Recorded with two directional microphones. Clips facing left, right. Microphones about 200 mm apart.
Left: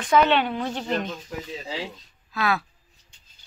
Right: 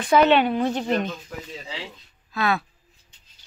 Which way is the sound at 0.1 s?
10° right (ahead or behind).